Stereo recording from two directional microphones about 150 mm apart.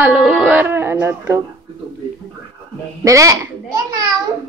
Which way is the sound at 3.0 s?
20° right (ahead or behind).